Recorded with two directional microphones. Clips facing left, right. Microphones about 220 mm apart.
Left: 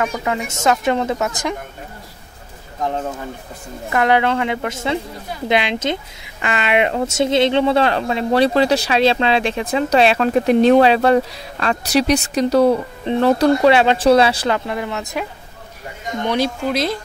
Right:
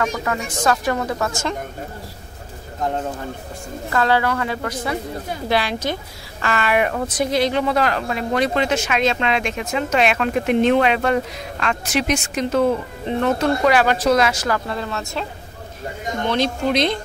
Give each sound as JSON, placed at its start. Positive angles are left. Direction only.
{"t": 0.0, "sound": "a woman's voice", "side_deg": 20}
{"t": 3.9, "sound": "a woman's voice", "side_deg": 20}
{"t": 14.7, "sound": "speech", "side_deg": 15}